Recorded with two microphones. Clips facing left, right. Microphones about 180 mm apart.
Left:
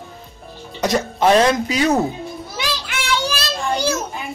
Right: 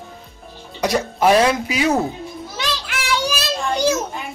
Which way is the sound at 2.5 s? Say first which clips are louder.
Even; centre (ahead or behind).